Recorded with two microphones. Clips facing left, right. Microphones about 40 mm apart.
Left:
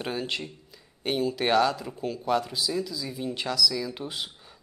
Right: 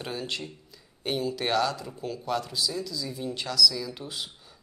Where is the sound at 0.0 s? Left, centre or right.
Centre.